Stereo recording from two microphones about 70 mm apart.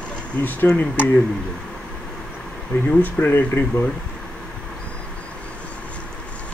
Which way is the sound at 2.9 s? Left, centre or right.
Left.